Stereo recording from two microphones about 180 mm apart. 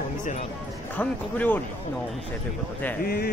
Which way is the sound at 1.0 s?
10° left (ahead or behind).